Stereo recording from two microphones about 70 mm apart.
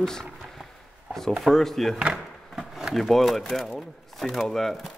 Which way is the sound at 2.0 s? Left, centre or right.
Centre.